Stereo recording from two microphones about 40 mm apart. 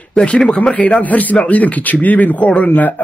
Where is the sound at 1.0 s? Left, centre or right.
Left.